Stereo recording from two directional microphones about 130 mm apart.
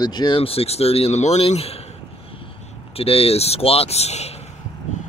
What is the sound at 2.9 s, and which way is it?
Speech, 50° left (ahead or behind).